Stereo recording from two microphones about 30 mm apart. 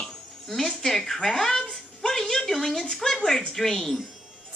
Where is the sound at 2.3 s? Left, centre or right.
Left.